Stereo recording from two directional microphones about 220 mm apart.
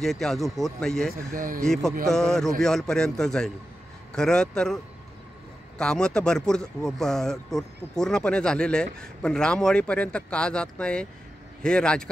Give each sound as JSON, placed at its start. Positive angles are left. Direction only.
{"t": 0.0, "sound": "speech", "side_deg": 0}
{"t": 1.1, "sound": "speech", "side_deg": -40}
{"t": 1.6, "sound": "speech", "side_deg": 0}
{"t": 5.8, "sound": "speech", "side_deg": 5}